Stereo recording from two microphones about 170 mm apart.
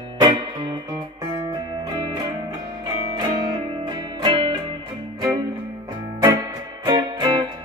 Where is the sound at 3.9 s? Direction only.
30° right (ahead or behind).